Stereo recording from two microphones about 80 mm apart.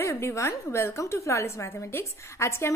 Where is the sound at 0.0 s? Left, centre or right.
Left.